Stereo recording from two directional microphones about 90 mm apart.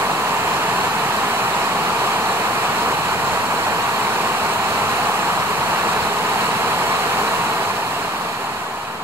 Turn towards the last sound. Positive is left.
turn(degrees=-25)  # may be behind; listen again after turning